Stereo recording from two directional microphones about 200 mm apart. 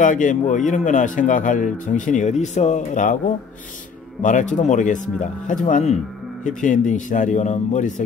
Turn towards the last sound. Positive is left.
turn(degrees=35)  # may be behind; listen again after turning